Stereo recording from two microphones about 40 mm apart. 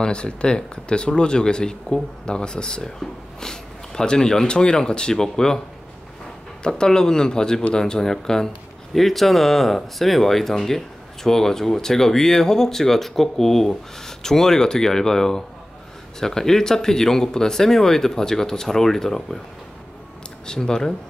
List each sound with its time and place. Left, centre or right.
0.0 s speech: left
6.8 s speech: centre
8.9 s speech: centre
20.4 s speech: centre